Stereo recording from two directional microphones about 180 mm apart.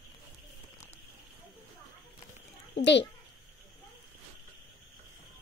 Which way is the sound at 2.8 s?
75° left (ahead or behind).